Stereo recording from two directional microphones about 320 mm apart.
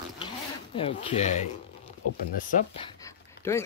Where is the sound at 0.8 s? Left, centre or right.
Centre.